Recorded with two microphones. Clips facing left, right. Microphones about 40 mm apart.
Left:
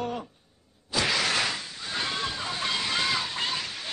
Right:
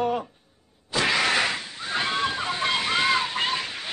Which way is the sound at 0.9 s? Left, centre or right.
Right.